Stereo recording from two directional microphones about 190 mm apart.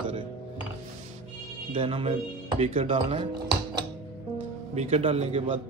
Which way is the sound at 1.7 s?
30° right (ahead or behind).